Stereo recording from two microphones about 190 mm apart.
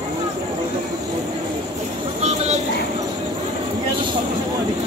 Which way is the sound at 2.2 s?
35° right (ahead or behind).